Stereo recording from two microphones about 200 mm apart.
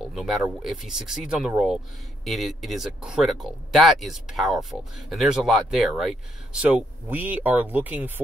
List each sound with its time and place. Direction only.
0.1 s speech: centre (ahead or behind)